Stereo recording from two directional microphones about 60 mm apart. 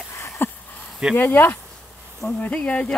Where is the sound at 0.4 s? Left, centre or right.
Left.